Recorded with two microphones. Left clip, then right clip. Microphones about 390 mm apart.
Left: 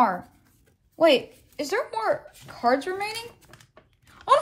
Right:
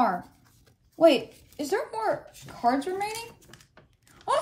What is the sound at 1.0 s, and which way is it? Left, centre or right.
A woman's voice, left.